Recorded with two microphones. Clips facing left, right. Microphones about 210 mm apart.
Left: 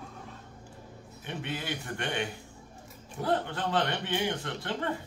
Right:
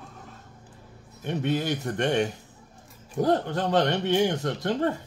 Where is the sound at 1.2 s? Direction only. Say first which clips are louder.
Right 10 dB; 40° right (ahead or behind).